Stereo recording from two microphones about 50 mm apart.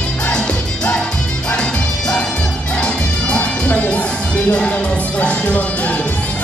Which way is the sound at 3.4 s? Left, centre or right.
Left.